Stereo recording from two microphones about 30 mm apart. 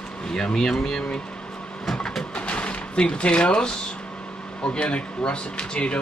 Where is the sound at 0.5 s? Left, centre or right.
Centre.